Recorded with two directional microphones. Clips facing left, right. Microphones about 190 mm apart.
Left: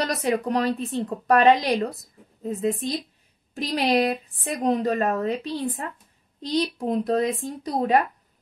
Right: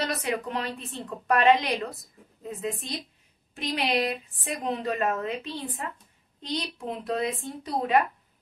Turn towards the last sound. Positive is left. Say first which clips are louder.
# left 3 dB
turn(degrees=40)  # may be behind; listen again after turning